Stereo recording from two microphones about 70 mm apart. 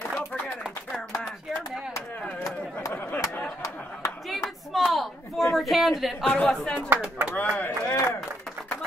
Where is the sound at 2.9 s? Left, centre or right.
Left.